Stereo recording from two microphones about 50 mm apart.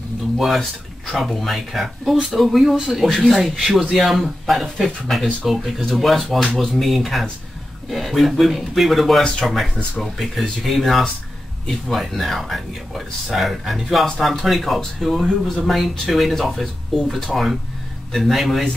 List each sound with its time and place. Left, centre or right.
1.1 s speech: centre
15.2 s speech: centre
15.6 s speech: centre